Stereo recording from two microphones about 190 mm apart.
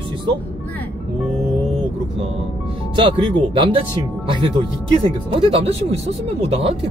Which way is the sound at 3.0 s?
25° right (ahead or behind).